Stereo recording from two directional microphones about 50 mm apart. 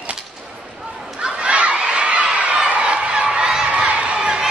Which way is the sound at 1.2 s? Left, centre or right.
Right.